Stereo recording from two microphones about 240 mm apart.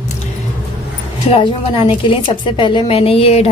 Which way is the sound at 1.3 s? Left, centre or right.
Left.